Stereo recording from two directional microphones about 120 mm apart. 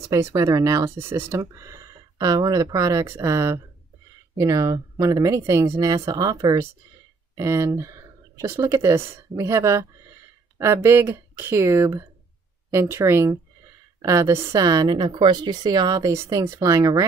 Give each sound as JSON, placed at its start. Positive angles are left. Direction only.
{"t": 0.1, "sound": "speech", "side_deg": -25}